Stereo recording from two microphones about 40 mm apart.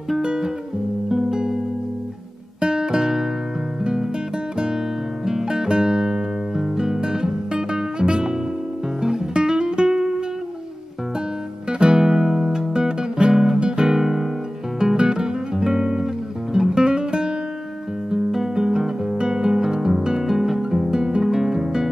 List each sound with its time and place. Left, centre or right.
0.2 s music: right
2.6 s music: centre
5.2 s guitar: centre
9.0 s music: centre
12.0 s music: centre
13.6 s guitar: right
13.9 s music: centre
14.8 s guitar: centre
16.5 s music: centre
18.3 s guitar: centre
20.0 s music: centre